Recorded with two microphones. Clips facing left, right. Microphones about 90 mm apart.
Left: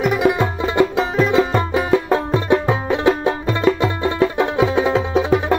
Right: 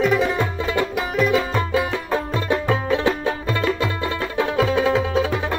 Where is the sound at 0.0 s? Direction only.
15° left (ahead or behind).